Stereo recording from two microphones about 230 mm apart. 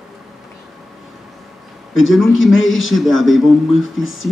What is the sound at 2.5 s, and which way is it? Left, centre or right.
Speech, left.